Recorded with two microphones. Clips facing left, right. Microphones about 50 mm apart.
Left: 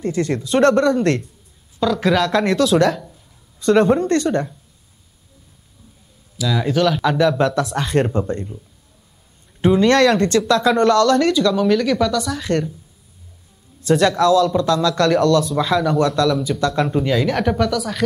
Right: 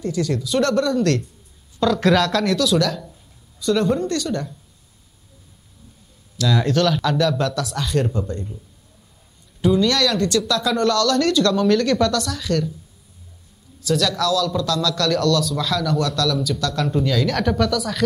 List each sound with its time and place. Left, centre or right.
0.0 s speech: left
1.8 s speech: centre
3.5 s speech: left
6.3 s speech: centre; by 8.5 s left
9.6 s speech: left; by 12.4 s centre
12.4 s speech: left
13.7 s a man's voice: left; by 18.0 s centre